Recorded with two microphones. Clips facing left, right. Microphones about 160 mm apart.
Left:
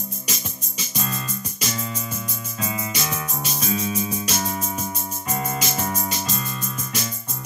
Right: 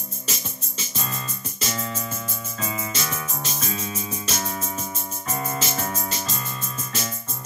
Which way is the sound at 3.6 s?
10° left (ahead or behind).